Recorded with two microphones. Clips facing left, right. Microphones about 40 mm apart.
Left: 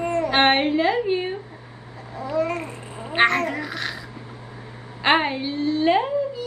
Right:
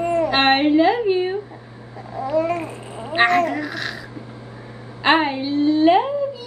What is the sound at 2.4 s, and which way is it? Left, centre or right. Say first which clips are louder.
Babbling: right 4 dB; centre.